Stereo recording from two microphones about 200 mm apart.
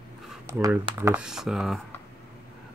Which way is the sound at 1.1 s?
5° right (ahead or behind).